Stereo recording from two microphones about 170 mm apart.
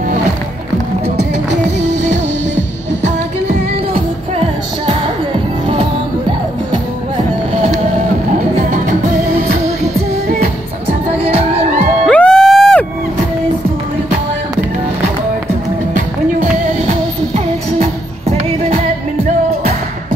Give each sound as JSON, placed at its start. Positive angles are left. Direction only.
{"t": 2.5, "sound": "music", "side_deg": -90}
{"t": 11.1, "sound": "music", "side_deg": -35}
{"t": 12.1, "sound": "music", "side_deg": 5}
{"t": 16.8, "sound": "music", "side_deg": -40}